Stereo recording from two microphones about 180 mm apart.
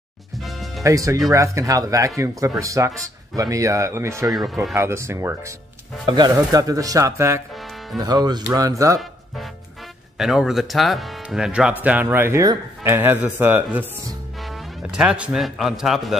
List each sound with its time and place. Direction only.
0.4 s music: centre (ahead or behind)
0.8 s speech: 20° right (ahead or behind)
10.1 s speech: centre (ahead or behind)